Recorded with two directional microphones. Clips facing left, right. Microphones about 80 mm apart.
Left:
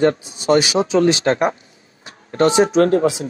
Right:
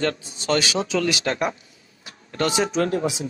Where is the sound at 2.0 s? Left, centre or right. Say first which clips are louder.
Left 8 dB; left.